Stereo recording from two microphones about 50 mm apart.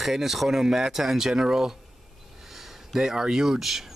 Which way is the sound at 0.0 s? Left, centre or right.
Centre.